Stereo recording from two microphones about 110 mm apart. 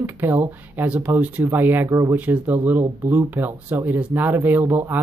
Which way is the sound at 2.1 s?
15° right (ahead or behind).